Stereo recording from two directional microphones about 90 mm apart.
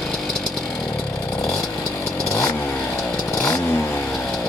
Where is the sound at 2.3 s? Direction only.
35° left (ahead or behind).